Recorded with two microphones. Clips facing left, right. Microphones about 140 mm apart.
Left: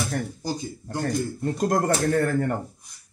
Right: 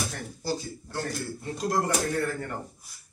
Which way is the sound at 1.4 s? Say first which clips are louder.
Left 4 dB; 50° left (ahead or behind).